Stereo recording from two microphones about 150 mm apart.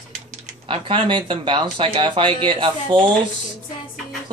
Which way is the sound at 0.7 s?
35° right (ahead or behind).